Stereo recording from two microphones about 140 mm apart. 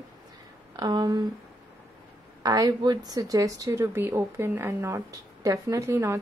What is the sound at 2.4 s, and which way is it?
A woman's voice, 25° right (ahead or behind).